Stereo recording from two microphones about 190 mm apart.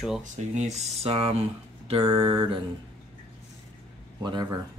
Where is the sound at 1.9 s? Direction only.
25° right (ahead or behind).